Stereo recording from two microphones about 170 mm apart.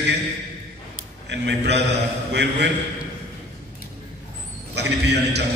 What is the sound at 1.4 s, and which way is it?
A man's voice, 90° right.